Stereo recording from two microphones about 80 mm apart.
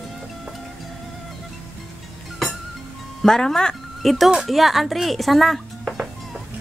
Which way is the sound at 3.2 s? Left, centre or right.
Centre.